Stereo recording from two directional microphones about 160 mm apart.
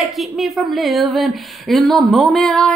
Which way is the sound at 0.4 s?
Centre (ahead or behind).